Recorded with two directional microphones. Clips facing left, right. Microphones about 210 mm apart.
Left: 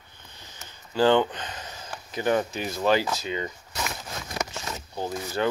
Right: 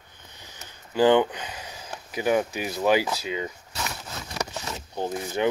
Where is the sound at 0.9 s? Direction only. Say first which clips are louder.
Right 2 dB; 15° right (ahead or behind).